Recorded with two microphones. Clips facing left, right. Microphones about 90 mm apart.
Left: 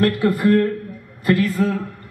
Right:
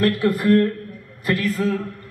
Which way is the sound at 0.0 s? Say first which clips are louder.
Left 2 dB; 15° left (ahead or behind).